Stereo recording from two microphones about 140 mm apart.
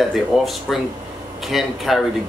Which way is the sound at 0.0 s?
Centre (ahead or behind).